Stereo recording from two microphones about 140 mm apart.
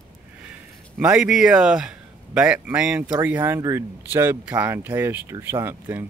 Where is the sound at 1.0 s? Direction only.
5° right (ahead or behind).